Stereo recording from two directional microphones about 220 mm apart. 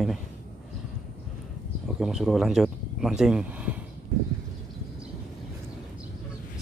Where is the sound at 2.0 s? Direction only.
Centre (ahead or behind).